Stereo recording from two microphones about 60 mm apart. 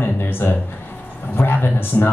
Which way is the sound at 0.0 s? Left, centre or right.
Left.